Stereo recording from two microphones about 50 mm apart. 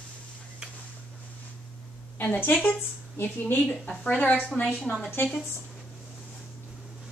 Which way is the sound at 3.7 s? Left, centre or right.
Left.